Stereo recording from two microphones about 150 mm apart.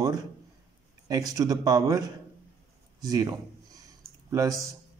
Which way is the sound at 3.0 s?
25° right (ahead or behind).